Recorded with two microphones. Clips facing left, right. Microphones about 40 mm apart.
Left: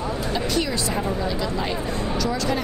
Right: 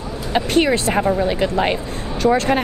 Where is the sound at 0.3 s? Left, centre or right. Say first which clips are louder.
Right 10 dB; right.